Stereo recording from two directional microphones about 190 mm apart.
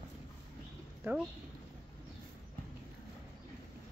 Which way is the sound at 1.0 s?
10° right (ahead or behind).